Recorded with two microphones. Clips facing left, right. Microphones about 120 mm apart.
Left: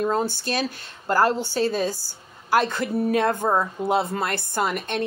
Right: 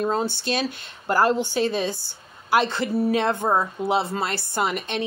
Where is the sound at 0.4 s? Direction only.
50° left (ahead or behind).